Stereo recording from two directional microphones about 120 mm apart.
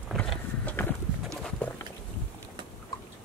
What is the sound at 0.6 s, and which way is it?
Horse, 15° left (ahead or behind).